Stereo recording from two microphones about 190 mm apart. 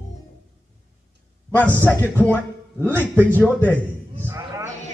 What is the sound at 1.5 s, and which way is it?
Speech, 10° left (ahead or behind).